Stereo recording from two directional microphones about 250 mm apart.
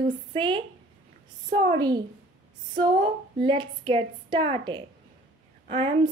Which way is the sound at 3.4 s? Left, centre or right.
Centre.